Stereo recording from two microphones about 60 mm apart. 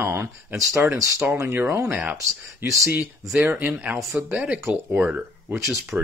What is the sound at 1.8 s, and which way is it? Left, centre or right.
Speech, right.